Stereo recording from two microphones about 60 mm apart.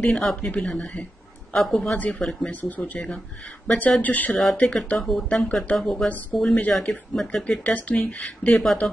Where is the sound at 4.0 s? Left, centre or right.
Left.